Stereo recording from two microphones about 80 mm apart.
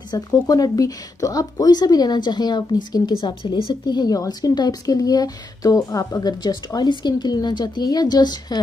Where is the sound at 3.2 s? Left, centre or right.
Left.